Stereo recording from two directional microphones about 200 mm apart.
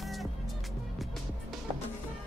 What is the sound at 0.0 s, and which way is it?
Music, centre (ahead or behind).